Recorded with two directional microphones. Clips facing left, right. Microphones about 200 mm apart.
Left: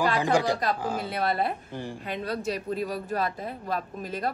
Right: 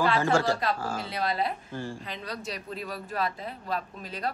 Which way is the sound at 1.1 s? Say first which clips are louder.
Left 1 dB; 55° left (ahead or behind).